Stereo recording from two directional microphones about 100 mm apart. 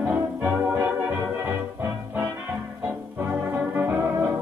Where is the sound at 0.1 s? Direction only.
20° right (ahead or behind).